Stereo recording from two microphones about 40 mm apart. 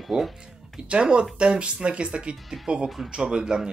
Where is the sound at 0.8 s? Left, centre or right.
Right.